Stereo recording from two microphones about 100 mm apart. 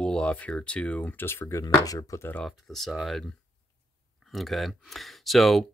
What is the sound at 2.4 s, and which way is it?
Speech, centre (ahead or behind).